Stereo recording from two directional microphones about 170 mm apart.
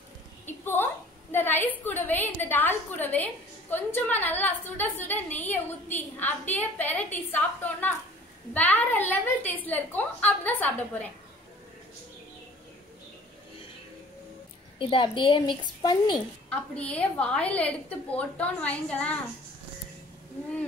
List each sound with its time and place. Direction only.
0.5 s a sound: 15° left (ahead or behind)
1.9 s a woman's voice: 10° left (ahead or behind)
14.8 s a woman's voice: 30° left (ahead or behind)
16.4 s a woman's voice: 5° left (ahead or behind)